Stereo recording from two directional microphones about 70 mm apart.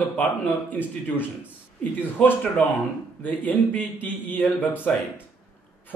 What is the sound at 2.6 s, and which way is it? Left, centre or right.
A man's voice, centre.